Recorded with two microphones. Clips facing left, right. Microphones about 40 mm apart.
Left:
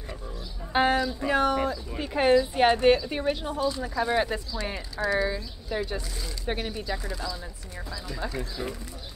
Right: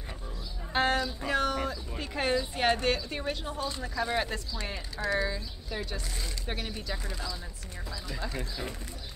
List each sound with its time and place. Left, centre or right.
0.7 s speech: centre
8.2 s speech: left